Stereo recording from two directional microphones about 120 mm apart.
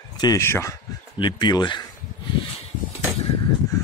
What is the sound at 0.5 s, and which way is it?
Speech, 20° left (ahead or behind).